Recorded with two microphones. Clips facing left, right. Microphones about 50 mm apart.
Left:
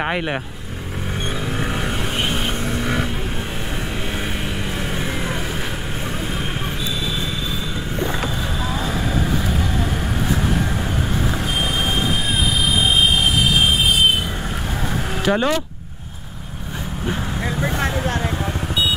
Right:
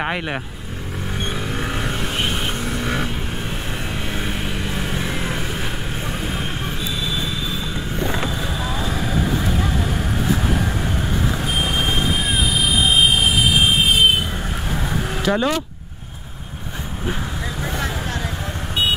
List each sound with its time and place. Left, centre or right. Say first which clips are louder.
0.0 s speech: left 2 dB; centre
2.7 s vehicle: left 1 dB; centre
4.9 s vehicle: even; centre
11.5 s vehicle: right 1 dB; centre
15.2 s speech: left 1 dB; centre
17.6 s vehicle: left 3 dB; left